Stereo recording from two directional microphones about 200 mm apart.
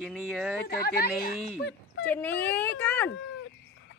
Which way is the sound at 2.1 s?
10° left (ahead or behind).